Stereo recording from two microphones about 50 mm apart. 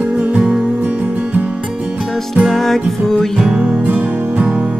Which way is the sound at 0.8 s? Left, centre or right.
Right.